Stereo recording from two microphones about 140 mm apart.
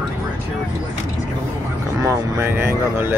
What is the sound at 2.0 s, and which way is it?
Speech, 15° right (ahead or behind).